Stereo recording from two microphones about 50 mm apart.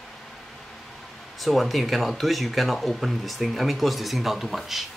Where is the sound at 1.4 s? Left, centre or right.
Centre.